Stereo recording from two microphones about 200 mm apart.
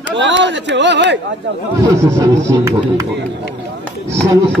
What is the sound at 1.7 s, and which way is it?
Speech, 15° right (ahead or behind).